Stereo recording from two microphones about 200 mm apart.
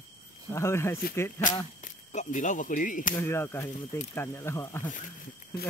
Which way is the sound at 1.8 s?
40° left (ahead or behind).